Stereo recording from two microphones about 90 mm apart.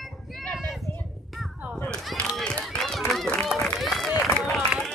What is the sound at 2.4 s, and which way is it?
Run, 5° left (ahead or behind).